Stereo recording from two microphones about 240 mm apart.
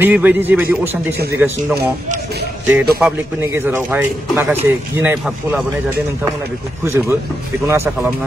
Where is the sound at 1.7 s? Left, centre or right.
Right.